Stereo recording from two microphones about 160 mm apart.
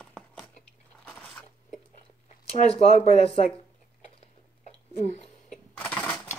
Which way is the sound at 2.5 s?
40° left (ahead or behind).